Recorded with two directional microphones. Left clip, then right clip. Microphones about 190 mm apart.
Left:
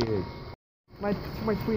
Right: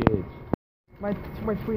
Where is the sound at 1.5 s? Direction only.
Centre (ahead or behind).